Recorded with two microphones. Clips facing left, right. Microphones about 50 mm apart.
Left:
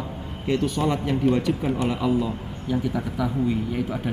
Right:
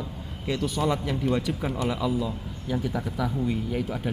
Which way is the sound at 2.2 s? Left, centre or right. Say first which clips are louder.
Left 3 dB; centre.